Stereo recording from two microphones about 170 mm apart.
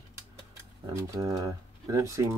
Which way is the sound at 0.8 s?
20° right (ahead or behind).